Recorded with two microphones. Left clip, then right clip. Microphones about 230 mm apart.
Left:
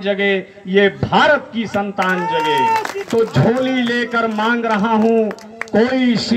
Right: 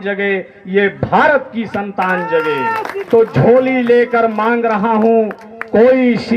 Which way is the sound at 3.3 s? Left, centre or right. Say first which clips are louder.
Right 6 dB; left.